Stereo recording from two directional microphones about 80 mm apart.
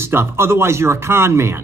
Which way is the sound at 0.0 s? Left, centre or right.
Right.